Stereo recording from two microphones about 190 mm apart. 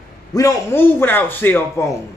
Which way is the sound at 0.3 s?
15° left (ahead or behind).